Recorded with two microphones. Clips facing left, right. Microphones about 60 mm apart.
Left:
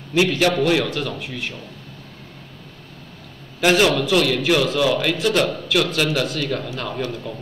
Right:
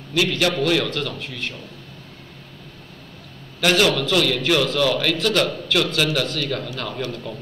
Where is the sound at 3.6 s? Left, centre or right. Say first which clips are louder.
Left 2 dB; centre.